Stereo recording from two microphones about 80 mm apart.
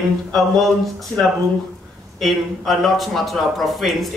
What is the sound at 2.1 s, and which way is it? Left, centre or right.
A man's voice, centre.